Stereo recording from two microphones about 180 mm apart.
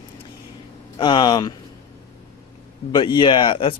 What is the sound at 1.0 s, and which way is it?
Speech, 25° left (ahead or behind).